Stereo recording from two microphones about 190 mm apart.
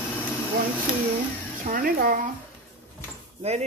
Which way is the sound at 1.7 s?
50° right (ahead or behind).